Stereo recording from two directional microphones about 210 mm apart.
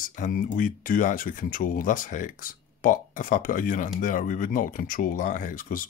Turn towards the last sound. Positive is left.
turn(degrees=40)  # may be behind; listen again after turning